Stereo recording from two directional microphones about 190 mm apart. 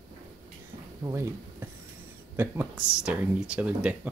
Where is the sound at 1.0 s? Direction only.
15° right (ahead or behind).